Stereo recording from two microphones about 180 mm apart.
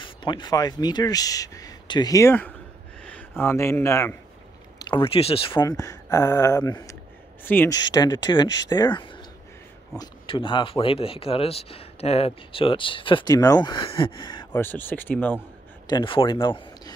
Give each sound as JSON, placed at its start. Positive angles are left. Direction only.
{"t": 0.0, "sound": "speech", "side_deg": 25}
{"t": 14.5, "sound": "speech", "side_deg": 10}
{"t": 15.9, "sound": "speech", "side_deg": 30}